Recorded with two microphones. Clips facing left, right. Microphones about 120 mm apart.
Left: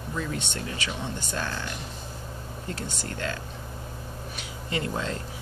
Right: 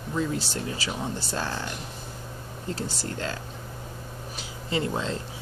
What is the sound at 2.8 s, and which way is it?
Speech, 35° right (ahead or behind).